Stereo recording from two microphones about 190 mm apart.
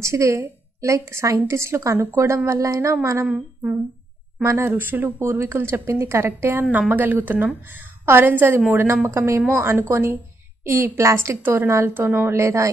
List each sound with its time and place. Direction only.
0.0 s a woman's voice: 15° right (ahead or behind)